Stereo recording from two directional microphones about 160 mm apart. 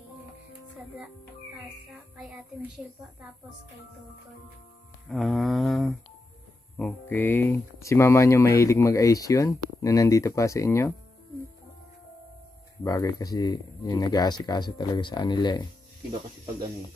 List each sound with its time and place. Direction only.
5.1 s a sound: centre (ahead or behind)
6.8 s speech: 10° left (ahead or behind)
12.8 s speech: 20° left (ahead or behind)